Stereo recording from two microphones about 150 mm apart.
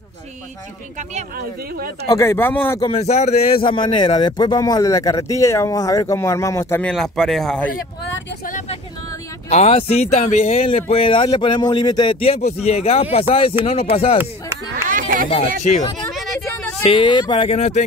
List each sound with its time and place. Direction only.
2.0 s speech: 20° left (ahead or behind)
2.8 s speech: 40° left (ahead or behind); by 6.9 s 15° left (ahead or behind)
6.9 s speech: centre (ahead or behind)
7.7 s vehicle: 65° left (ahead or behind)
9.5 s speech: 45° left (ahead or behind)
14.9 s a sound: 65° right (ahead or behind)
15.7 s speech: 50° left (ahead or behind)
16.8 s speech: 35° left (ahead or behind)